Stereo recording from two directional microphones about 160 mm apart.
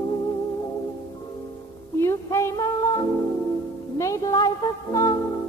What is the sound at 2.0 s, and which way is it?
Female singing, 15° left (ahead or behind).